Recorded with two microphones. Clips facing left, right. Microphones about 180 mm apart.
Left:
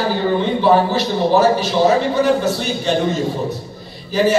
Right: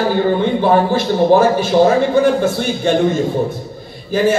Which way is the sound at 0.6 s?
50° right (ahead or behind).